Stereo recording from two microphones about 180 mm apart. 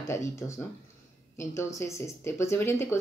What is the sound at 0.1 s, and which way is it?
Speech, 15° left (ahead or behind).